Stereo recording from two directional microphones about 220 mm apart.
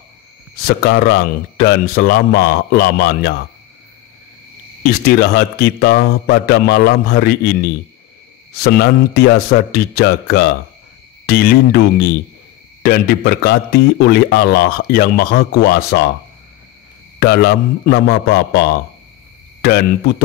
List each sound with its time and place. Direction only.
0.7 s a man's voice: 50° left (ahead or behind)
5.0 s a man's voice: 50° left (ahead or behind)
17.2 s a man's voice: 45° left (ahead or behind)
19.6 s a man's voice: 45° left (ahead or behind)